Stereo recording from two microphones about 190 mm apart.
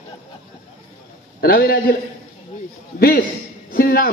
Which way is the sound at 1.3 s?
50° left (ahead or behind).